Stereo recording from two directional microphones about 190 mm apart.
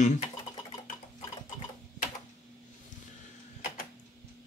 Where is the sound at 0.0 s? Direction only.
40° left (ahead or behind).